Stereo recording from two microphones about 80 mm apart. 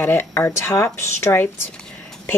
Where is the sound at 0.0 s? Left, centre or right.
Left.